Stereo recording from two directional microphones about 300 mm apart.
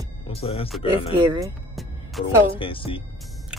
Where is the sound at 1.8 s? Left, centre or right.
Centre.